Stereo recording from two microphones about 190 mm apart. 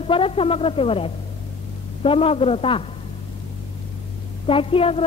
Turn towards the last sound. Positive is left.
turn(degrees=30)  # may be behind; listen again after turning